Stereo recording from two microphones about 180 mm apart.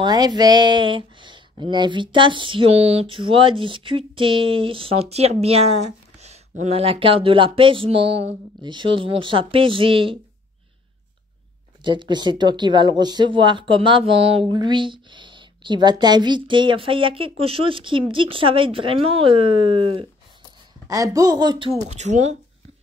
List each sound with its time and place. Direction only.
0.0 s speech: 25° right (ahead or behind)
11.8 s speech: 25° right (ahead or behind)